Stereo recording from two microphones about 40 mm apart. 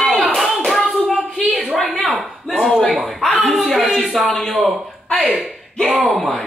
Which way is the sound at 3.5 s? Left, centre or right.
Centre.